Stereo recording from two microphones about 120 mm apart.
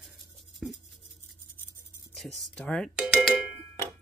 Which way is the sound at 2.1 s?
5° left (ahead or behind).